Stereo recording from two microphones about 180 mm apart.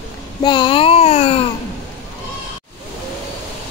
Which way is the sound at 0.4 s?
25° left (ahead or behind).